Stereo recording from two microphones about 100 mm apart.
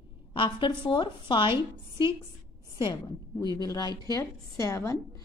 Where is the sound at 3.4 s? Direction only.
40° left (ahead or behind).